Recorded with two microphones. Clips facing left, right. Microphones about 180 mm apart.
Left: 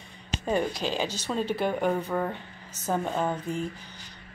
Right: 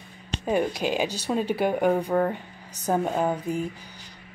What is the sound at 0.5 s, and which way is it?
A woman's voice, 10° right (ahead or behind).